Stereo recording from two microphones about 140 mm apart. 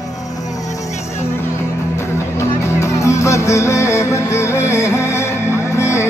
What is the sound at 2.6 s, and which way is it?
Music, 20° left (ahead or behind).